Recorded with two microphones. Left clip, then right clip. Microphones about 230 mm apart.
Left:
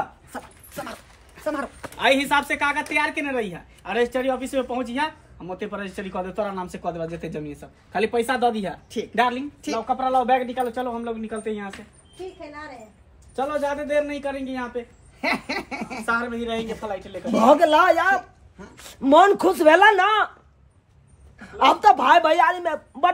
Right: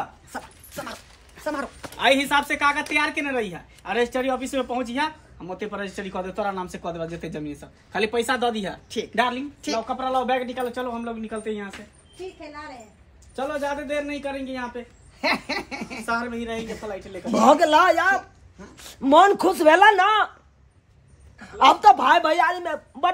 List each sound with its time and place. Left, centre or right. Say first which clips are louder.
0.3 s a man's voice: right 1 dB; centre
13.4 s a man's voice: left 2 dB; centre
15.9 s speech: left 2 dB; centre
17.3 s a man's voice: even; centre
21.4 s a man's voice: right 1 dB; centre